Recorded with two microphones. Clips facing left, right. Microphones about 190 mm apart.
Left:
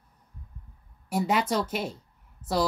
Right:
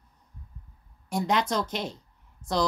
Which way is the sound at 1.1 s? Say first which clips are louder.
Left 1 dB; 10° left (ahead or behind).